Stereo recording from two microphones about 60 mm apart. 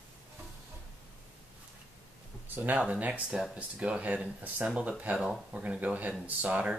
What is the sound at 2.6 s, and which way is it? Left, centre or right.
Speech, right.